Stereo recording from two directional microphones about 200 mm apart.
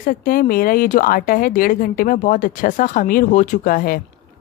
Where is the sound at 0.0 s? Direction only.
45° left (ahead or behind).